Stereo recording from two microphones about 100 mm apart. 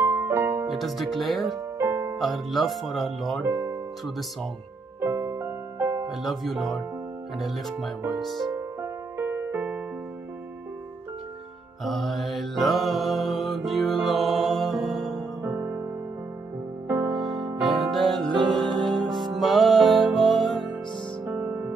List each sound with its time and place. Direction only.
0.0 s music: 20° right (ahead or behind)
0.7 s speech: centre (ahead or behind)
1.8 s music: 25° right (ahead or behind)
2.1 s speech: centre (ahead or behind)
5.0 s music: 30° right (ahead or behind)
6.2 s speech: centre (ahead or behind)
8.5 s music: 25° right (ahead or behind)
11.8 s mantra: centre (ahead or behind)
15.4 s music: 25° right (ahead or behind)
16.8 s music: 20° right (ahead or behind)
17.1 s music: centre (ahead or behind)
18.3 s music: 50° right (ahead or behind)
18.9 s music: 5° left (ahead or behind)
21.3 s music: 20° right (ahead or behind)